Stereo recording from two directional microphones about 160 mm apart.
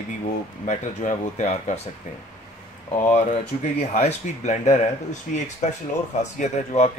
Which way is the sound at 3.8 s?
45° left (ahead or behind).